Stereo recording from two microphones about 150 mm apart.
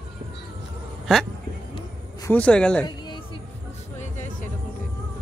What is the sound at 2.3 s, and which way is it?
Speech, 5° left (ahead or behind).